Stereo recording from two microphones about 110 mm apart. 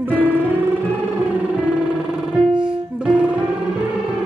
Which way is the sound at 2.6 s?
10° right (ahead or behind).